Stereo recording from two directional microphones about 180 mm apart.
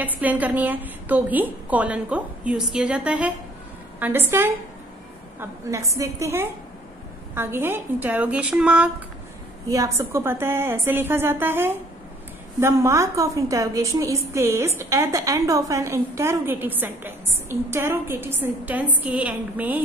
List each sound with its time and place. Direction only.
0.0 s a woman's voice: 10° right (ahead or behind)
9.7 s a woman's voice: 15° right (ahead or behind)